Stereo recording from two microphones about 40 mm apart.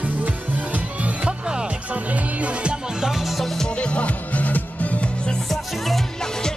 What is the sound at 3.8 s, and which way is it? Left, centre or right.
Music, left.